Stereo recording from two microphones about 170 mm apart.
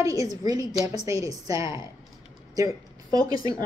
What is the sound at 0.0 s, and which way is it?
A woman's voice, 20° right (ahead or behind).